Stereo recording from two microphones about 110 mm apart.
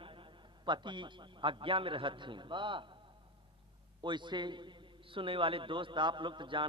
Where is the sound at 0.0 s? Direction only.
50° right (ahead or behind).